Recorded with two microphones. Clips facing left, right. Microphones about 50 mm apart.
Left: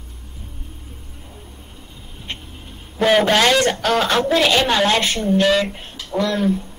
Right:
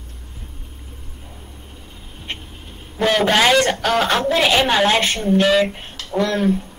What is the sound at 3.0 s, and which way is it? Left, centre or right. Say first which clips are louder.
A woman's voice: left 1 dB; centre.